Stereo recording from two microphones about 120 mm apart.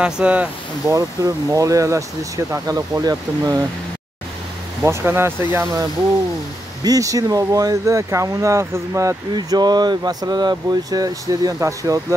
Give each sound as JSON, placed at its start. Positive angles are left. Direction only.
{"t": 0.0, "sound": "speech", "side_deg": -10}
{"t": 0.8, "sound": "speech", "side_deg": -30}
{"t": 4.8, "sound": "speech", "side_deg": -20}